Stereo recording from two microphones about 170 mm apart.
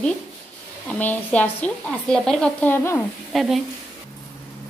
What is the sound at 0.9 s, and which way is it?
A woman's voice, 10° left (ahead or behind).